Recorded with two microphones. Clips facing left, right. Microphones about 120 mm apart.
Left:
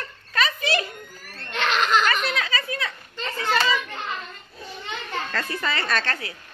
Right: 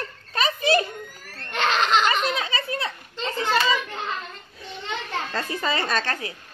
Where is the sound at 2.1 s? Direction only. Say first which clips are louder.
Right 1 dB; 25° right (ahead or behind).